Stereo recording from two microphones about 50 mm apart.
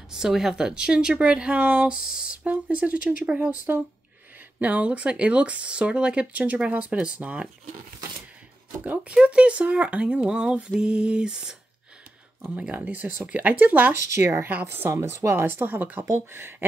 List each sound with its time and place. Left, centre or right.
0.1 s speech: centre; by 2.0 s right
2.0 s speech: centre
2.3 s speech: right
4.6 s speech: right
9.1 s speech: right
12.4 s speech: right
13.9 s speech: right
16.0 s speech: right